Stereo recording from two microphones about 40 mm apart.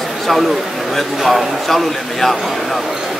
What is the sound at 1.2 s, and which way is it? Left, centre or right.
A man's voice, centre.